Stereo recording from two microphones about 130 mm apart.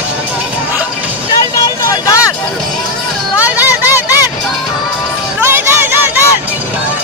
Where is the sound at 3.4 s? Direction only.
10° right (ahead or behind).